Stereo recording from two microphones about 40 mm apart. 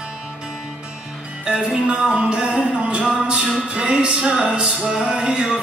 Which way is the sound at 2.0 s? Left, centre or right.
Centre.